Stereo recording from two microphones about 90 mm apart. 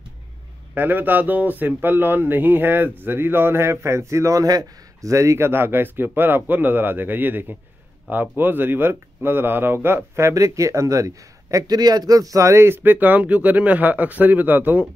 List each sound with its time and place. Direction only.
0.7 s speech: 20° right (ahead or behind)